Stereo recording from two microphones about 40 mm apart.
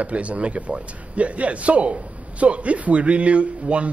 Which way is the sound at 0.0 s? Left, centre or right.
Right.